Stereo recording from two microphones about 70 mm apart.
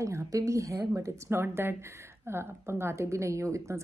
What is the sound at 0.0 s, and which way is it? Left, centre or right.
A woman's voice, right.